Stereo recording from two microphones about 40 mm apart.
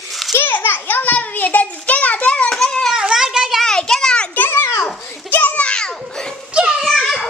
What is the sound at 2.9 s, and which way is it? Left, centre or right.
Cat, centre.